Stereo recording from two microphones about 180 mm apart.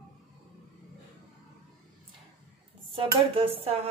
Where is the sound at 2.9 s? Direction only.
30° right (ahead or behind).